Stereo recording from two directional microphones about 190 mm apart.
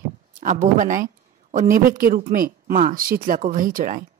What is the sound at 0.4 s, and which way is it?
A man's voice, 40° right (ahead or behind).